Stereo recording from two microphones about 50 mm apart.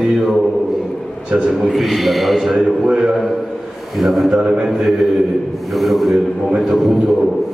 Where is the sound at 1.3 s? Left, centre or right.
Centre.